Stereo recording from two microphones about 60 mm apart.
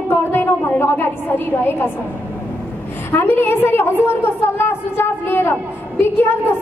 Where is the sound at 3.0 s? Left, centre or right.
Left.